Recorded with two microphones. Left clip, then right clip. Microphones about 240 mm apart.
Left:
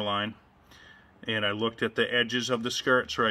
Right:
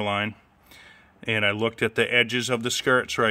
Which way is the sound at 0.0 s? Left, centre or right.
Right.